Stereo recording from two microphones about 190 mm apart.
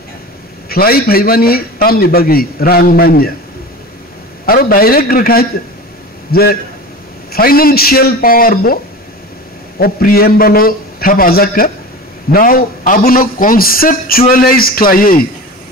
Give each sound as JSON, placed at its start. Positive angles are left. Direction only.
{"t": 0.7, "sound": "a man's voice", "side_deg": 50}
{"t": 4.5, "sound": "a man's voice", "side_deg": 50}
{"t": 9.8, "sound": "a man's voice", "side_deg": 50}